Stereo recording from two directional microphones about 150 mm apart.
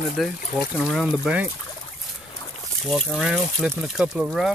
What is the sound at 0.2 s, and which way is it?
Speech, centre (ahead or behind).